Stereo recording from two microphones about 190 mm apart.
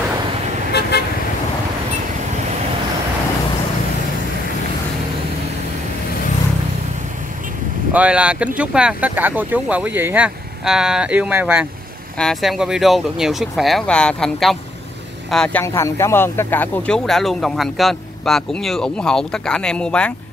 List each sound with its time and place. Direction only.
7.9 s speech: 5° right (ahead or behind)